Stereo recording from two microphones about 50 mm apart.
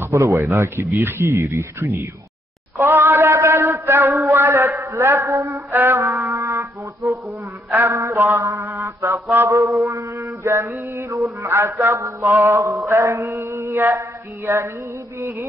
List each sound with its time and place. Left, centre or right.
0.0 s speech: right
1.0 s mantra: right
1.3 s speech: right
2.8 s a sound: right
3.3 s a sound: right
4.4 s mantra: right
5.1 s music: right
7.2 s a man's voice: right
8.0 s mantra: right
10.1 s mantra: right
11.7 s mantra: right
12.9 s mantra: right
13.8 s mantra: right